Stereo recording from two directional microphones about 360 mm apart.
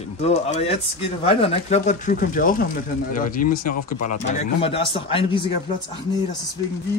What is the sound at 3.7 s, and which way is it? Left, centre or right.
Speech, left.